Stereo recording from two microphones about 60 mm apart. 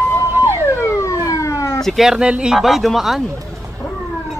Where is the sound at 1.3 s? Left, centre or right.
Left.